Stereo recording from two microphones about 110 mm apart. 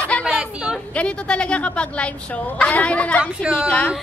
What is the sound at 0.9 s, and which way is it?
A woman's voice, 10° left (ahead or behind).